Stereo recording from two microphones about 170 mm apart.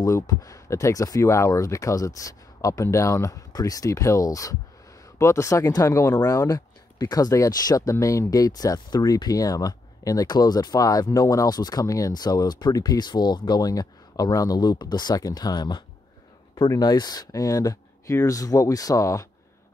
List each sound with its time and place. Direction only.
0.0 s speech: 20° left (ahead or behind)